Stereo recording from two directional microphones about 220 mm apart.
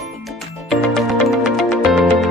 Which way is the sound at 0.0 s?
Centre (ahead or behind).